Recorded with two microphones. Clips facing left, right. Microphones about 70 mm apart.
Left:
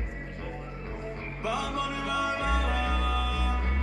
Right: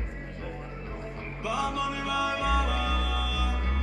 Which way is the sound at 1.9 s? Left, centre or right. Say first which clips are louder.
Even; left.